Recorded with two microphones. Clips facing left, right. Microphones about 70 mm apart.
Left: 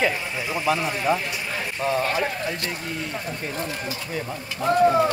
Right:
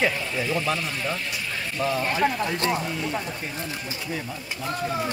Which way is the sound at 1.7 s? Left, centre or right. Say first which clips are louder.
Left 2 dB; centre.